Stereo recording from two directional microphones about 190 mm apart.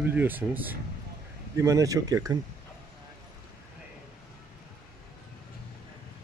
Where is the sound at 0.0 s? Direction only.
10° right (ahead or behind).